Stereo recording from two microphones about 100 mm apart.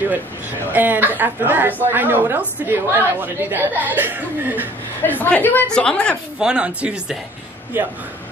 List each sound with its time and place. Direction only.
0.7 s a woman's voice: 20° right (ahead or behind)
5.2 s a woman's voice: 20° left (ahead or behind)
6.4 s speech: 10° right (ahead or behind)